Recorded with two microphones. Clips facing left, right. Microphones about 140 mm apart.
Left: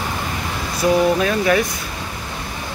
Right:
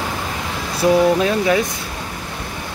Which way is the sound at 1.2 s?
20° right (ahead or behind).